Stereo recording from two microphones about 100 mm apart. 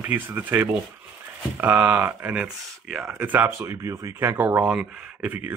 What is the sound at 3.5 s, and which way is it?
Speech, 30° right (ahead or behind).